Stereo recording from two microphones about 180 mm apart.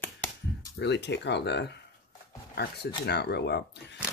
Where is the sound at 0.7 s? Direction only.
70° left (ahead or behind).